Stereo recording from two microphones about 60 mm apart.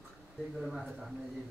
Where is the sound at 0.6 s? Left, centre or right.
Centre.